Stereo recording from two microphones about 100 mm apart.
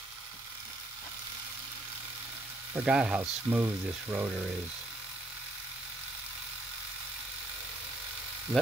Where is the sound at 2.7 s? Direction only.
10° right (ahead or behind).